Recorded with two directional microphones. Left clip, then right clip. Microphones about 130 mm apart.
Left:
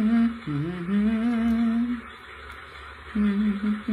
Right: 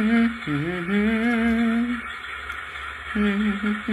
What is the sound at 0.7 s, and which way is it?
Humming, 30° left (ahead or behind).